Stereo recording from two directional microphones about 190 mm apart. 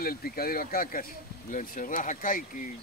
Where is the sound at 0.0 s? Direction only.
50° left (ahead or behind).